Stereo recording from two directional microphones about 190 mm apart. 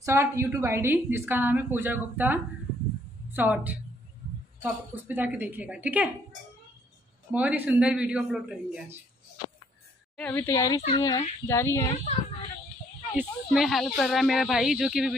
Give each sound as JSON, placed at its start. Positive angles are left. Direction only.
{"t": 0.0, "sound": "a woman's voice", "side_deg": -15}
{"t": 7.3, "sound": "speech", "side_deg": -10}
{"t": 10.1, "sound": "speech", "side_deg": 10}
{"t": 13.1, "sound": "speech", "side_deg": -5}